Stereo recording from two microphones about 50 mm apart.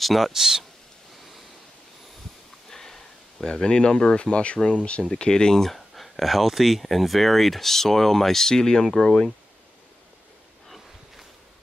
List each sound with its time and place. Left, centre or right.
0.0 s speech: centre
2.7 s speech: centre